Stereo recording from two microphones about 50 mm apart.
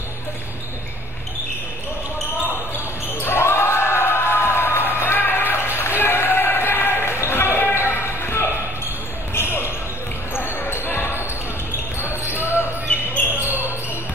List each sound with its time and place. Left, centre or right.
3.2 s basketball bounce: left
12.3 s basketball bounce: left